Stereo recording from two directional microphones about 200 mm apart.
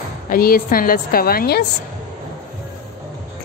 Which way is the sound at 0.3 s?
45° left (ahead or behind).